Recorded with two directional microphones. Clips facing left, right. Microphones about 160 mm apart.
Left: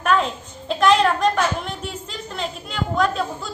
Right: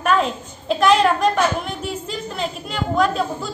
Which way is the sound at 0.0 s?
5° right (ahead or behind).